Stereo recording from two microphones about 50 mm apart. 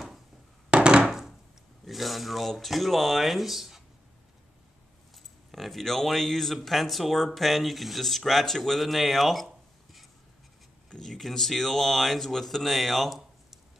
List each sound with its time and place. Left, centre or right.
0.7 s wood: centre
1.9 s speech: centre
5.1 s speech: centre
10.9 s speech: centre